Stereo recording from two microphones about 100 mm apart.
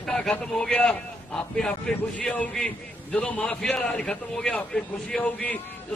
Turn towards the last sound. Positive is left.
turn(degrees=15)  # may be behind; listen again after turning